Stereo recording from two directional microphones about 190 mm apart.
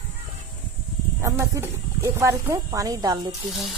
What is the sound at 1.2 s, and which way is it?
Speech, 15° right (ahead or behind).